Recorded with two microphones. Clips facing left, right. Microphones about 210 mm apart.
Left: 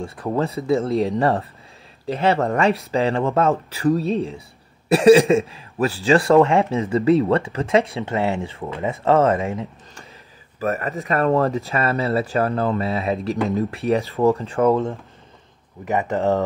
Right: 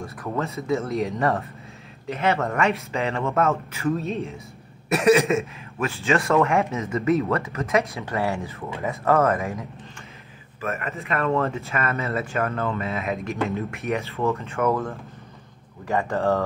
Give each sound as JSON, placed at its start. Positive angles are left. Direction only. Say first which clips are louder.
{"t": 0.0, "sound": "speech", "louder": "left 5 dB", "side_deg": 30}